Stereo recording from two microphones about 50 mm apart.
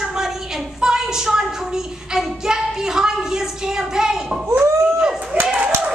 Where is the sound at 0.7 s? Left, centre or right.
Centre.